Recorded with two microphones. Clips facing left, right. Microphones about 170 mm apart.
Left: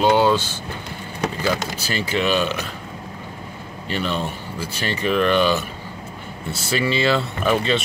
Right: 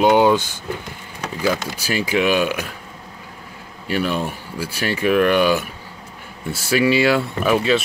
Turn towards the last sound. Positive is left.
turn(degrees=-5)  # may be behind; listen again after turning